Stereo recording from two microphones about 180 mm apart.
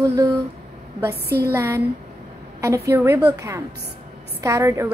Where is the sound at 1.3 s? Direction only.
60° right (ahead or behind).